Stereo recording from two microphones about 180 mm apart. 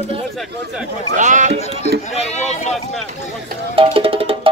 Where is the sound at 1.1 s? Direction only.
45° right (ahead or behind).